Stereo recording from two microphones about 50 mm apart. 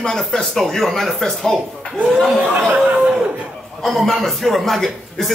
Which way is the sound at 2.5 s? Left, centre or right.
Right.